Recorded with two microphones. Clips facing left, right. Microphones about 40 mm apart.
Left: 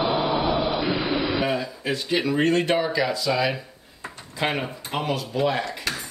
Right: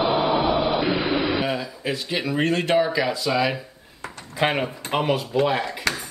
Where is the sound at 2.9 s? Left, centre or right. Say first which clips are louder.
Right 1 dB; centre.